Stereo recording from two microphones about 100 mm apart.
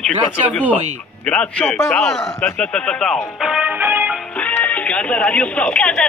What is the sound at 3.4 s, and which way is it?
Music, 15° right (ahead or behind).